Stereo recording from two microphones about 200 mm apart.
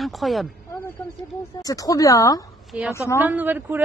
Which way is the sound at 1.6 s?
15° left (ahead or behind).